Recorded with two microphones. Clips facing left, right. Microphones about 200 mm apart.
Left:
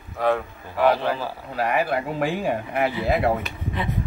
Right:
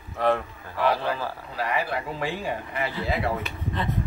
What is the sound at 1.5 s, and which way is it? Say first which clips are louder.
Speech: left 5 dB; 55° left (ahead or behind).